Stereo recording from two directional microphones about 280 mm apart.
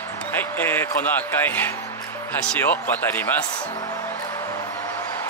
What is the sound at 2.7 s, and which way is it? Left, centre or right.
Speech, centre.